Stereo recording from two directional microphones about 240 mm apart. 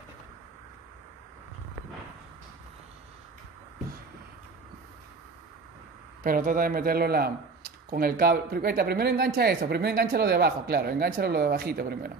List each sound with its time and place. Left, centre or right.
6.2 s speech: right